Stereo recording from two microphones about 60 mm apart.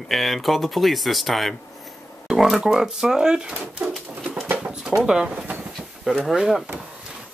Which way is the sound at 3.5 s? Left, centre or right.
Right.